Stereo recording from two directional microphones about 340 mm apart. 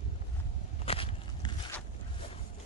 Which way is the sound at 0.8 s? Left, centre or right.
Centre.